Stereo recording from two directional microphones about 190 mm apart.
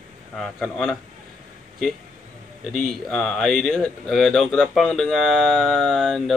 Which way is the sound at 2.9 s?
5° left (ahead or behind).